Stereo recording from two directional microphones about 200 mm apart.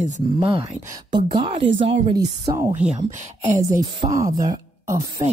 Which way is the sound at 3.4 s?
35° right (ahead or behind).